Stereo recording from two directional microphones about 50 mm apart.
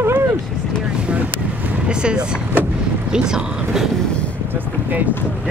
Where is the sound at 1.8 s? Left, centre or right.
Centre.